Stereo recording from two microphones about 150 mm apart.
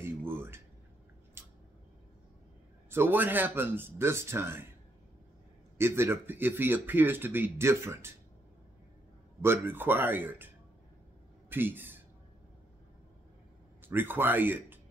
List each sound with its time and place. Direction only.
0.0 s a sound: 15° right (ahead or behind)
1.4 s scissors: 15° right (ahead or behind)
2.9 s speech: 15° right (ahead or behind)
5.8 s speech: 15° right (ahead or behind)
9.4 s speech: 15° right (ahead or behind)
13.7 s a man's voice: 15° right (ahead or behind)